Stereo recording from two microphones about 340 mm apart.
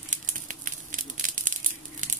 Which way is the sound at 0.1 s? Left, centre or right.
Right.